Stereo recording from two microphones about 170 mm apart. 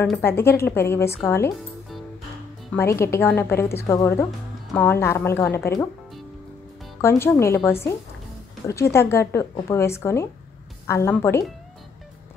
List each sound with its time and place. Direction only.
0.0 s speech: 10° left (ahead or behind)
2.7 s speech: 15° left (ahead or behind)
7.0 s speech: 15° left (ahead or behind)